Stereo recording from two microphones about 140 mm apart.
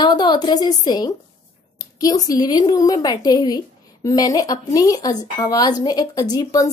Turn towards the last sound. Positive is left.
turn(degrees=30)  # may be behind; listen again after turning